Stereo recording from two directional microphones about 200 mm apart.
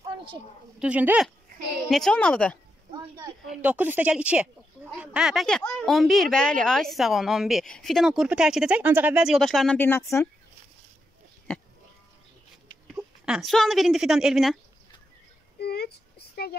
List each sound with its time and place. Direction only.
0.7 s a woman's voice: 5° right (ahead or behind)
3.4 s a woman's voice: 5° right (ahead or behind); by 10.2 s 15° left (ahead or behind)
11.5 s speech: 5° left (ahead or behind)
12.9 s a woman's voice: 5° right (ahead or behind)
15.6 s a sound: 50° left (ahead or behind)